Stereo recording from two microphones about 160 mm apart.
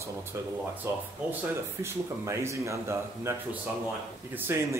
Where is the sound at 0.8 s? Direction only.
15° right (ahead or behind).